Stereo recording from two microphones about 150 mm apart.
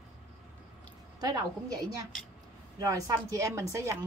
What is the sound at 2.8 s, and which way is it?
A woman's voice, 25° right (ahead or behind).